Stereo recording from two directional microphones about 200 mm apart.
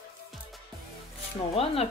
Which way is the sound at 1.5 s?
30° left (ahead or behind).